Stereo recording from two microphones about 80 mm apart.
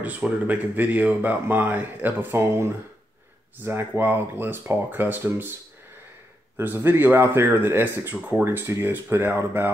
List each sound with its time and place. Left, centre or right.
0.0 s speech: right
6.5 s speech: right